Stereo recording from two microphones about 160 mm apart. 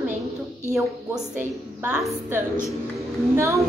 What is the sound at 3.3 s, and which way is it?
Speech, 20° right (ahead or behind).